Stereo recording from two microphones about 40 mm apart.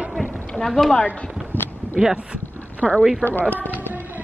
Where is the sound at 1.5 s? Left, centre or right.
Left.